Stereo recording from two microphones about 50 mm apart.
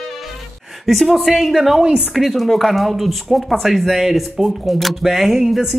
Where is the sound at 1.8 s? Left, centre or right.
Centre.